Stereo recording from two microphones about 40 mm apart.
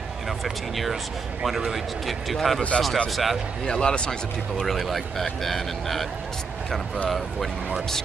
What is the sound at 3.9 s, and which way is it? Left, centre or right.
Speech, left.